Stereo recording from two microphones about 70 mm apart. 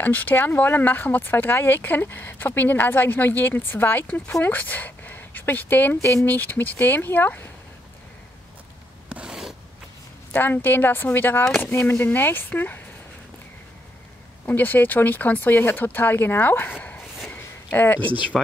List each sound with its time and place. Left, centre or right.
0.0 s speech: left
9.1 s rub: centre
10.3 s speech: left
14.4 s speech: left
17.4 s a sound: left
18.3 s speech: centre